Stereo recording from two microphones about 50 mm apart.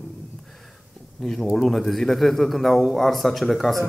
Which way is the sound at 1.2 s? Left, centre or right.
Centre.